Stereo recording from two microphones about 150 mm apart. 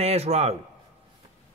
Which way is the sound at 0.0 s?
45° right (ahead or behind).